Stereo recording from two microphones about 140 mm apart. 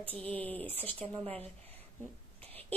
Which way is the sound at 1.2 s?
45° right (ahead or behind).